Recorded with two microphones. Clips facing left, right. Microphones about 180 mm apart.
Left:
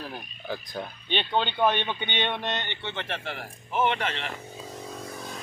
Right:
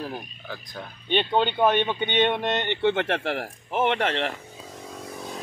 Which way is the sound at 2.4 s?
60° right (ahead or behind).